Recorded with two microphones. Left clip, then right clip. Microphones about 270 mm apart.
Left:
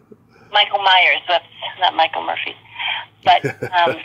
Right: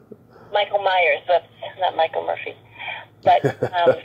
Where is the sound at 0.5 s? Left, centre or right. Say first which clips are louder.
Left 5 dB; left.